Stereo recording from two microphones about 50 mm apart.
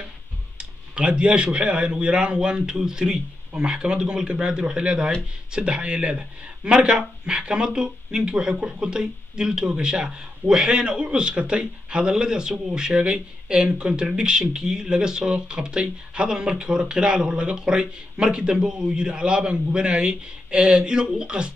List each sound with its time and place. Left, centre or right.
0.6 s speech: centre